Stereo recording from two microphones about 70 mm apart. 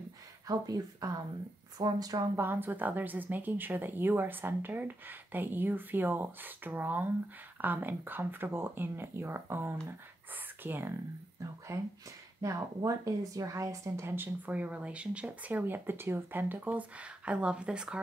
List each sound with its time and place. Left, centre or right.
0.5 s speech: right
2.3 s speech: right
11.7 s speech: right; by 18.0 s centre